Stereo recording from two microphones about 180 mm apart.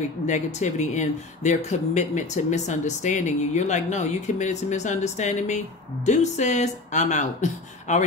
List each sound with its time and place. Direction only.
0.3 s speech: 40° left (ahead or behind)